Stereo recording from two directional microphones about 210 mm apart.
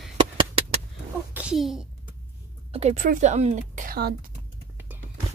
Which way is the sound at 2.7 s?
30° right (ahead or behind).